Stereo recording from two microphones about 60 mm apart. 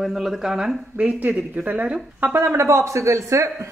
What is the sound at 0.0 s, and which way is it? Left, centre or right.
Speech, centre.